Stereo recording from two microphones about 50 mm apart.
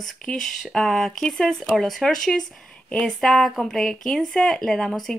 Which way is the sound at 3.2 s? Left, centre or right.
Centre.